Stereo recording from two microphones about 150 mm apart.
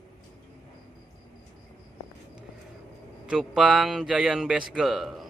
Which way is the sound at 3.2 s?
5° right (ahead or behind).